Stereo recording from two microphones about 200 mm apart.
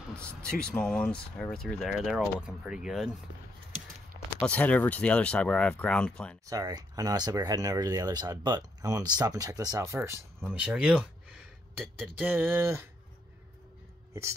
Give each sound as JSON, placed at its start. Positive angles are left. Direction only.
{"t": 0.1, "sound": "speech", "side_deg": 5}
{"t": 4.4, "sound": "speech", "side_deg": 5}
{"t": 6.4, "sound": "speech", "side_deg": -15}